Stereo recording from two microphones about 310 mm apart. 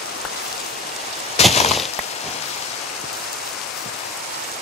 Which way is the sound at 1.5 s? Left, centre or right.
Left.